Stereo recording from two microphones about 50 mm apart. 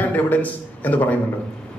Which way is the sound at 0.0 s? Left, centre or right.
Left.